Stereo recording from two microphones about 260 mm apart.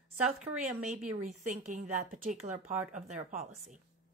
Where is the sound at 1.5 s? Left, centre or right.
Right.